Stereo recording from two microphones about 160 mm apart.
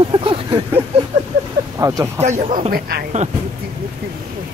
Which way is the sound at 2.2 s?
50° right (ahead or behind).